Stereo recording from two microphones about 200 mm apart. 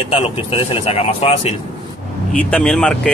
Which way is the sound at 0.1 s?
30° left (ahead or behind).